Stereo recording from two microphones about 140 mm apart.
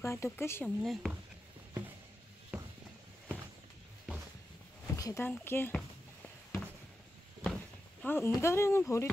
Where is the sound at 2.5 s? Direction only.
15° right (ahead or behind).